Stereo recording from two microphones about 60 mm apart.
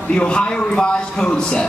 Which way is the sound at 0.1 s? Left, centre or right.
Centre.